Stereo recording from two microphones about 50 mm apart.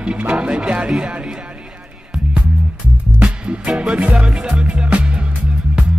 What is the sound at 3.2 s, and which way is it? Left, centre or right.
Music, right.